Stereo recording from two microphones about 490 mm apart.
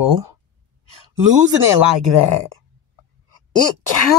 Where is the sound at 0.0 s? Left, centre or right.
Right.